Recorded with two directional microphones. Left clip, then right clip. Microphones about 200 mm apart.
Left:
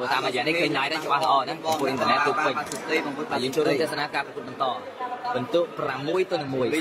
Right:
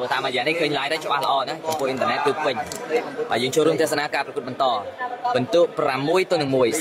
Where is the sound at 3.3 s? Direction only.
35° right (ahead or behind).